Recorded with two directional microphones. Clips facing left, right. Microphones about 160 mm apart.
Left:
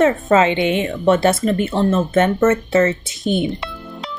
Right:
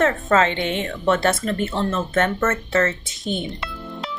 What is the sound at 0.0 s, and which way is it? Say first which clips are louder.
Speech: left 4 dB; 10° left (ahead or behind).